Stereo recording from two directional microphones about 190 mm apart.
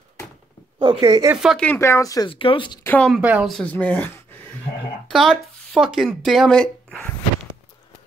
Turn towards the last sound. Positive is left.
turn(degrees=5)  # may be behind; listen again after turning